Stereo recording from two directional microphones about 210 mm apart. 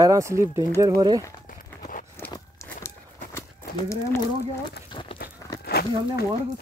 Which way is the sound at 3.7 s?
15° left (ahead or behind).